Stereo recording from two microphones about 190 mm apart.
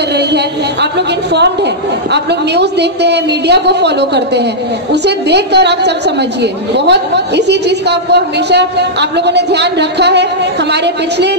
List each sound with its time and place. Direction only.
0.9 s a woman's voice: 65° right (ahead or behind)